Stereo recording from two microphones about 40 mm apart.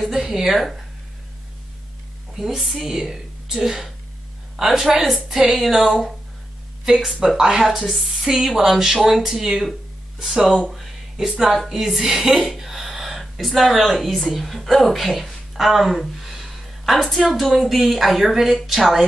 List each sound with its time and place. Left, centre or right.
0.0 s speech: centre
2.3 s speech: centre
7.3 s speech: centre
7.6 s a woman's voice: centre